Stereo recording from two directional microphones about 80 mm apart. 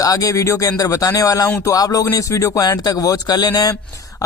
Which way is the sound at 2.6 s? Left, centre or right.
Left.